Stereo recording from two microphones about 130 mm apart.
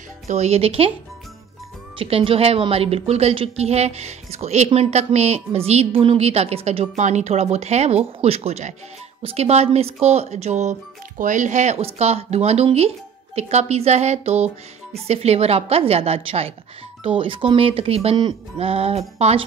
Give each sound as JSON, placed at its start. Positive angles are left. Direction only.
{"t": 0.3, "sound": "a woman's voice", "side_deg": -55}
{"t": 2.0, "sound": "a woman's voice", "side_deg": -45}